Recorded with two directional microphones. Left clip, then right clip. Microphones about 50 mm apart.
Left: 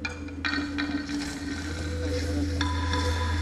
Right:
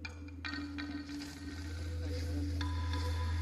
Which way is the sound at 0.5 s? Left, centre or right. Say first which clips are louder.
Left 13 dB; left.